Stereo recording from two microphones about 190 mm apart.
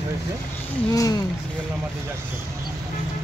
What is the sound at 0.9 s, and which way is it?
Speech, 20° left (ahead or behind).